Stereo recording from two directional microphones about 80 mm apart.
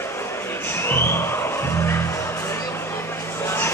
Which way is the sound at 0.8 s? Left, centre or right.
Left.